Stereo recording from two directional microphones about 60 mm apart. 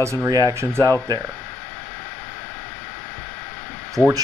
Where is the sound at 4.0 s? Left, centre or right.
Left.